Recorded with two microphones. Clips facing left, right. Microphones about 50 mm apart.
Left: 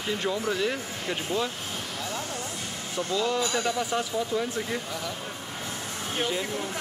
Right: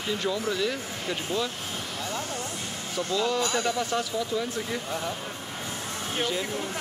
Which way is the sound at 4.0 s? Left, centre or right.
Left.